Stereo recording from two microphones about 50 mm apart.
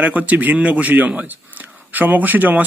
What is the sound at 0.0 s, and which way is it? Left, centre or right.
A man's voice, right.